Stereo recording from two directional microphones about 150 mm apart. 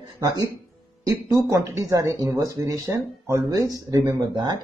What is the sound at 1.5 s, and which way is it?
Speech, 20° right (ahead or behind).